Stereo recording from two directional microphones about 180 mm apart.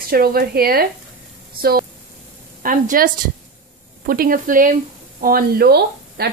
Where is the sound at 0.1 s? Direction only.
55° right (ahead or behind).